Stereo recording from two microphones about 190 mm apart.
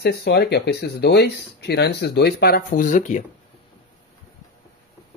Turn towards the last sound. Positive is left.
turn(degrees=40)  # may be behind; listen again after turning